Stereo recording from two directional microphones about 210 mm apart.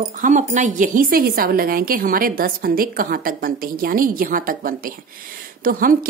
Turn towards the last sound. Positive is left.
turn(degrees=-45)  # may be behind; listen again after turning